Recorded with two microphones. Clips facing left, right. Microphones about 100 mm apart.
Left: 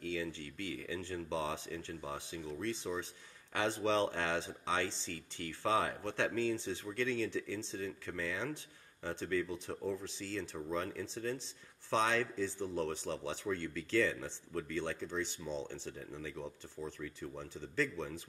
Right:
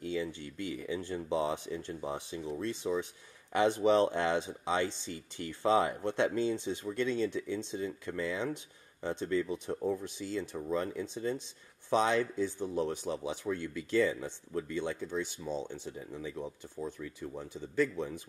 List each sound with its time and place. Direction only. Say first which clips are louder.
0.0 s speech: right 4 dB; 20° right (ahead or behind)